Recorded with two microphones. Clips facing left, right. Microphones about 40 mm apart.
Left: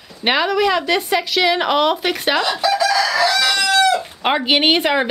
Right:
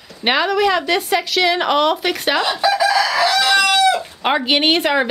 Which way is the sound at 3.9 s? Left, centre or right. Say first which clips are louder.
Even; centre.